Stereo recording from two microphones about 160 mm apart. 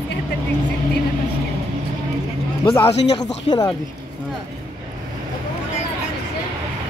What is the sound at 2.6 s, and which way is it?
Speech, 35° left (ahead or behind).